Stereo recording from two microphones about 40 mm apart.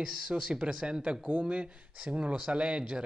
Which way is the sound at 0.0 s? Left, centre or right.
Right.